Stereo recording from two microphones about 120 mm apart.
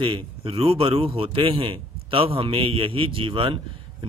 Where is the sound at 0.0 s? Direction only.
45° right (ahead or behind).